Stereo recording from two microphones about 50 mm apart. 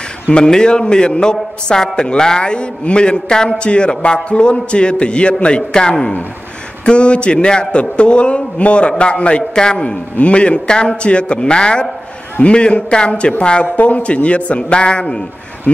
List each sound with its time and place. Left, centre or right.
0.3 s a man's voice: centre
13.7 s a man's voice: left